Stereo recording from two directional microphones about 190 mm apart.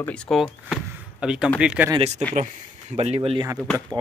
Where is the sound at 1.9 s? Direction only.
35° right (ahead or behind).